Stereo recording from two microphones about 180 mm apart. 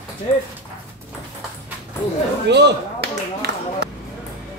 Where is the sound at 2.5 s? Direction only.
70° right (ahead or behind).